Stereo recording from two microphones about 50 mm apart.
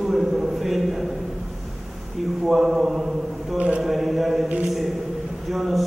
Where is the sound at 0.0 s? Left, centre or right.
Centre.